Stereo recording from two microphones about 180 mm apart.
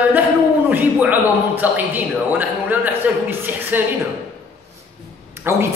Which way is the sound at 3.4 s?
10° right (ahead or behind).